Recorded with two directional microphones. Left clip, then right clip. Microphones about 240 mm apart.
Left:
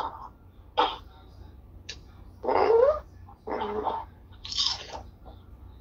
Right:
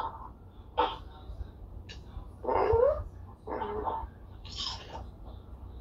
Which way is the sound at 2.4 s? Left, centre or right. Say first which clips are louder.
Left 4 dB; left.